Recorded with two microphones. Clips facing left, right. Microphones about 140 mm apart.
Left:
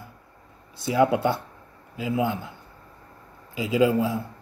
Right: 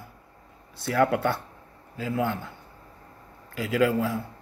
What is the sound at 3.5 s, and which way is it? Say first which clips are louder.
Speech: left 2 dB; 20° left (ahead or behind).